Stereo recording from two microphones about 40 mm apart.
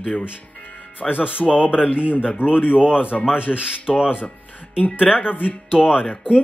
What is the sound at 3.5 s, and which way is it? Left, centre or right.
Speech, centre.